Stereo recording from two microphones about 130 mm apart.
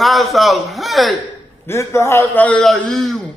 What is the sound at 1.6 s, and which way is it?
A man's voice, 20° left (ahead or behind).